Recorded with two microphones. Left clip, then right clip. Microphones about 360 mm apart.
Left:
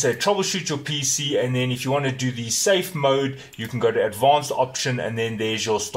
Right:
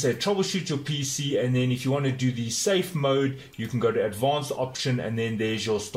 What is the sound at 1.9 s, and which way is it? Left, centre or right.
Speech, left.